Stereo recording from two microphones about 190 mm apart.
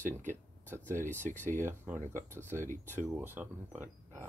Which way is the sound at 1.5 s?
45° right (ahead or behind).